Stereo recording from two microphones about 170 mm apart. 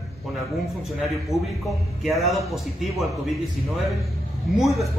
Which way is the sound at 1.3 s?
Centre (ahead or behind).